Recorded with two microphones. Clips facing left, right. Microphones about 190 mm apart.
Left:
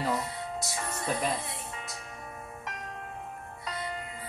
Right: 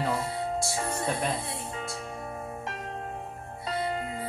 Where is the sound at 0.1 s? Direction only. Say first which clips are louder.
Right 3 dB; 30° right (ahead or behind).